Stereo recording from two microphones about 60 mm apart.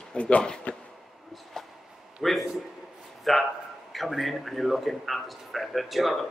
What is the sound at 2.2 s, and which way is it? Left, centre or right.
Speech, centre.